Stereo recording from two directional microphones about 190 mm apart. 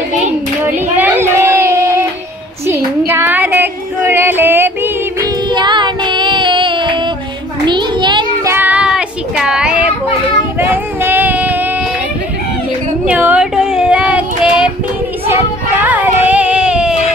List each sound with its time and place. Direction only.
0.2 s hands: 10° right (ahead or behind)
0.9 s a sound: 10° right (ahead or behind)
3.1 s female singing: 10° right (ahead or behind)
5.5 s child singing: 25° right (ahead or behind)
8.5 s child singing: 5° right (ahead or behind)
13.0 s child singing: 10° right (ahead or behind)
15.8 s a sound: 10° right (ahead or behind)